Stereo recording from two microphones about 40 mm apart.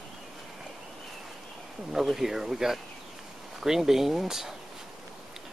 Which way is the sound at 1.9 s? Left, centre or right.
Centre.